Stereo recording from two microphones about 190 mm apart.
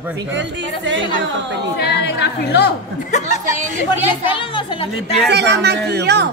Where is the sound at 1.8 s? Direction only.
60° left (ahead or behind).